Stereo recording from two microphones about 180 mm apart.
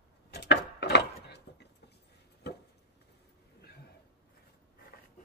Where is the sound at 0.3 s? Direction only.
65° left (ahead or behind).